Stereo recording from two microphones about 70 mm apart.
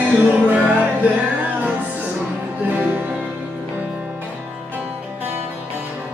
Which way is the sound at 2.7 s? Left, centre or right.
Right.